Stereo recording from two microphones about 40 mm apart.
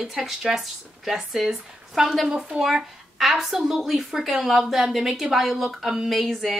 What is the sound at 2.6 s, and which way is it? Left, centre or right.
Speech, centre.